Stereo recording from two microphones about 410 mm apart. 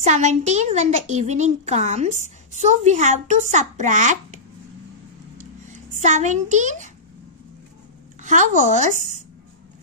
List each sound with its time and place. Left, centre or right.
0.0 s speech: centre
5.4 s a sound: centre
8.2 s speech: centre